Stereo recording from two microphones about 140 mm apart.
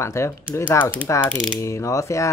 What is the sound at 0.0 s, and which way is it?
Speech, 20° left (ahead or behind).